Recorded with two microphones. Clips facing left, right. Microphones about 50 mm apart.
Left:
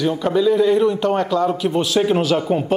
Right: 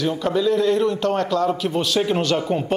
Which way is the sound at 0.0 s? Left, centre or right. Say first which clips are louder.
Left 3 dB; centre.